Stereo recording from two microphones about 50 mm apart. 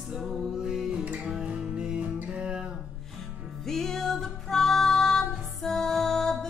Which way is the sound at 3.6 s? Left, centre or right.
Centre.